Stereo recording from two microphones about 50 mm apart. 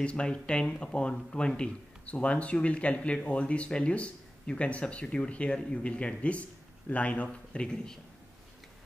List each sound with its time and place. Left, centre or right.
0.0 s speech: left
7.6 s a man's voice: centre